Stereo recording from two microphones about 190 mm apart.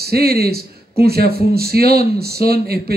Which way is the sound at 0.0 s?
55° right (ahead or behind).